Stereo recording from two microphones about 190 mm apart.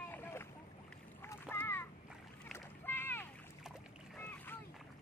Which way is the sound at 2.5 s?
10° left (ahead or behind).